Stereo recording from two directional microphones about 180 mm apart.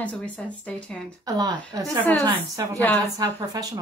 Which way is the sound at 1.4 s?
20° right (ahead or behind).